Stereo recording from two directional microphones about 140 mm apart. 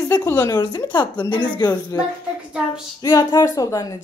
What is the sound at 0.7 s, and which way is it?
Speech, 35° left (ahead or behind).